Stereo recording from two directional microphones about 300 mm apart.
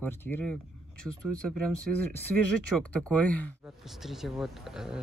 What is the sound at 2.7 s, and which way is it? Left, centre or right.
Speech, centre.